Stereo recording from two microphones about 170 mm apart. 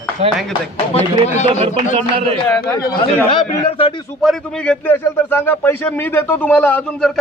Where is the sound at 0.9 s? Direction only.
40° left (ahead or behind).